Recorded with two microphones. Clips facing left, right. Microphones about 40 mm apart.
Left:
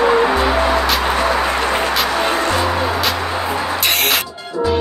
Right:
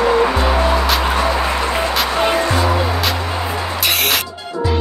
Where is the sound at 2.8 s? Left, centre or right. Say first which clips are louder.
Left 1 dB; centre.